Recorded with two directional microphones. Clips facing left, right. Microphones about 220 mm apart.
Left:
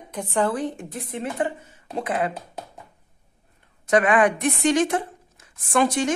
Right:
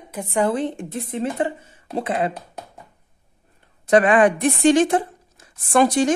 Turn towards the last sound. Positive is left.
turn(degrees=-35)  # may be behind; listen again after turning